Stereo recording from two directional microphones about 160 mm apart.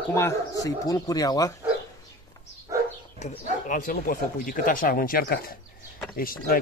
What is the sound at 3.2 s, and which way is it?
Speech, 50° left (ahead or behind).